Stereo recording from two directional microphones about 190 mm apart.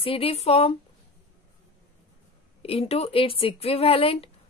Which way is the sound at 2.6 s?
30° left (ahead or behind).